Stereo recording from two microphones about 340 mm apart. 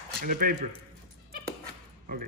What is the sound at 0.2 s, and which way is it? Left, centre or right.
Speech, right.